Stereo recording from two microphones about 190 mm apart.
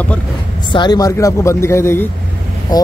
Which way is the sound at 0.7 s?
20° left (ahead or behind).